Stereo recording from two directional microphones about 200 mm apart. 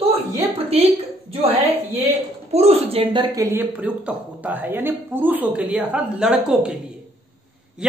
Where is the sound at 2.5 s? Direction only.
30° right (ahead or behind); by 6.8 s 5° right (ahead or behind).